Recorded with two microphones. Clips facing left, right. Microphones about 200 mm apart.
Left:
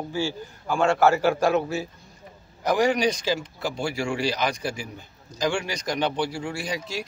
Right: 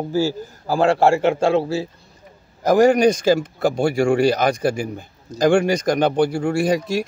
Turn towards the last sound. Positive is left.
turn(degrees=-50)  # may be behind; listen again after turning